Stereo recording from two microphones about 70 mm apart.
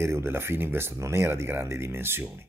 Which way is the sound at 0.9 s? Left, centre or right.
Right.